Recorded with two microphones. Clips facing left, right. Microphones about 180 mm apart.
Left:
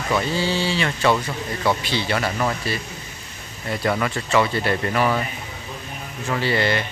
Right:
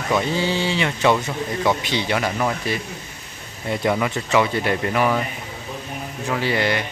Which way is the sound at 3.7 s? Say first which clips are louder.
Right 2 dB; 15° right (ahead or behind).